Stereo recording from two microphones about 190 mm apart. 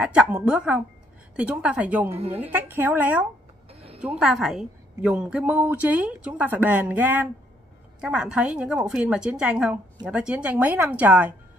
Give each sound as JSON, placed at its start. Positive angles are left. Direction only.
{"t": 0.0, "sound": "a woman's voice", "side_deg": -5}
{"t": 2.0, "sound": "a woman's voice", "side_deg": -30}
{"t": 2.3, "sound": "a woman's voice", "side_deg": -10}